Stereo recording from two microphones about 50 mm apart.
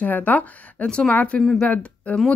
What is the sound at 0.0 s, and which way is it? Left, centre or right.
A woman's voice, left.